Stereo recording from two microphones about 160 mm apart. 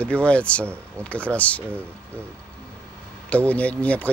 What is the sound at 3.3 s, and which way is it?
Speech, 10° left (ahead or behind).